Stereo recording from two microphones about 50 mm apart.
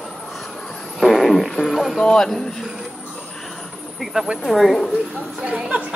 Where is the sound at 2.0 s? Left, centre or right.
Centre.